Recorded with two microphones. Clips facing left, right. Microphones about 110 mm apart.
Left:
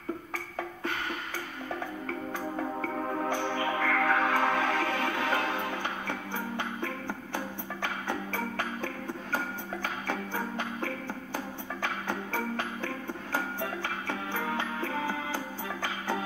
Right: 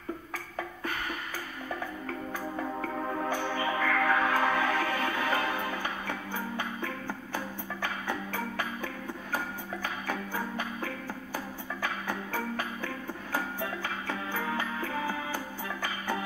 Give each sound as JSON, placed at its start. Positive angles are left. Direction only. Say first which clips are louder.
{"t": 2.4, "sound": "music", "louder": "left 1 dB", "side_deg": 10}
{"t": 14.4, "sound": "music", "louder": "left 1 dB", "side_deg": 20}